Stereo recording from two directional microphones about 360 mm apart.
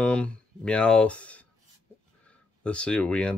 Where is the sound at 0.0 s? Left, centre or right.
Centre.